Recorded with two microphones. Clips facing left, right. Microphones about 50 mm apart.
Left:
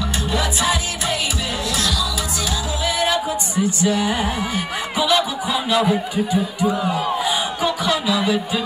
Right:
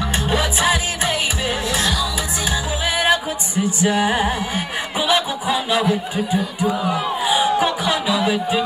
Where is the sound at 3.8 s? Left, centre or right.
Right.